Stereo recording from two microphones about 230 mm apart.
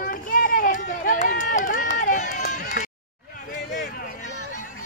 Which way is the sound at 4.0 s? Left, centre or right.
Left.